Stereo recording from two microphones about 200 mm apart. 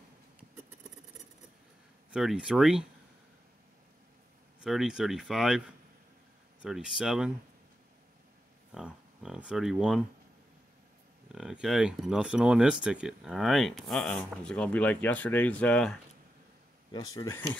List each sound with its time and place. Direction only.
2.0 s speech: 5° right (ahead or behind)
4.6 s speech: centre (ahead or behind)
6.6 s speech: 5° right (ahead or behind)
8.7 s speech: 5° right (ahead or behind)
11.3 s speech: 5° right (ahead or behind)
16.9 s speech: 20° left (ahead or behind)